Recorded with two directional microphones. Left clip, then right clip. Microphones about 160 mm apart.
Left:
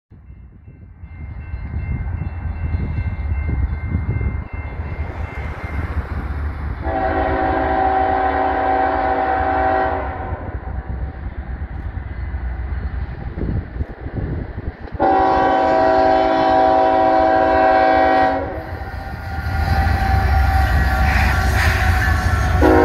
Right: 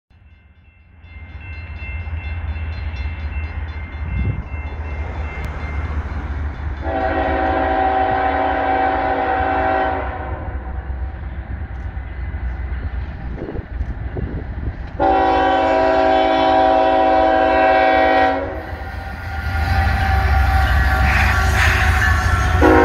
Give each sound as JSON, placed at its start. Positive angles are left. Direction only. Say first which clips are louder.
{"t": 6.9, "sound": "train", "louder": "even", "side_deg": -15}
{"t": 15.0, "sound": "train", "louder": "even", "side_deg": -15}
{"t": 20.1, "sound": "train", "louder": "right 1 dB", "side_deg": -10}
{"t": 20.6, "sound": "music", "louder": "right 1 dB", "side_deg": 10}